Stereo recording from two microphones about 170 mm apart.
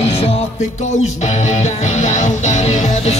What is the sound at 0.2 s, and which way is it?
Music, 45° left (ahead or behind).